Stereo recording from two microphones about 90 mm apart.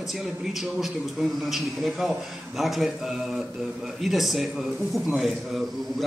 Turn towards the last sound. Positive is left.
turn(degrees=0)  # may be behind; listen again after turning